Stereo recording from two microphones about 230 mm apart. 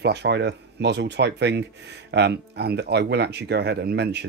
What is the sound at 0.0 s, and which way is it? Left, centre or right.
Speech, right.